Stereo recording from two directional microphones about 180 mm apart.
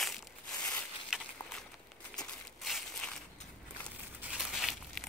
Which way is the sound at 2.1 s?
Centre (ahead or behind).